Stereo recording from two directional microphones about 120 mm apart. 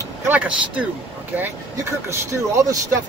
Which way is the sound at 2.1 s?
25° right (ahead or behind).